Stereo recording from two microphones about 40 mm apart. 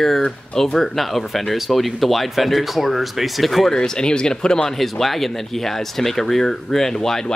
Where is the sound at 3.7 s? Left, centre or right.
Centre.